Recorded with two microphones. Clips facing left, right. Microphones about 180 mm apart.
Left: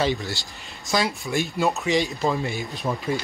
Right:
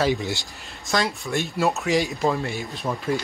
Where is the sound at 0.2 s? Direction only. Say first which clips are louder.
Right 3 dB; 20° right (ahead or behind).